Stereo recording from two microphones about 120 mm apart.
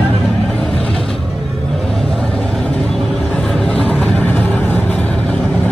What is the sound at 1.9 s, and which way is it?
Vehicle, 5° left (ahead or behind).